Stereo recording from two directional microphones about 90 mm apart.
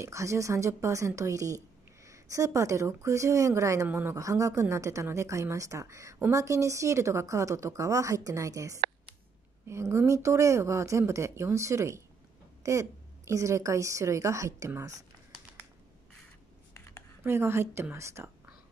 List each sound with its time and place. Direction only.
0.0 s speech: 35° right (ahead or behind)
16.7 s a sound: 30° left (ahead or behind)
17.2 s a woman's voice: 30° right (ahead or behind)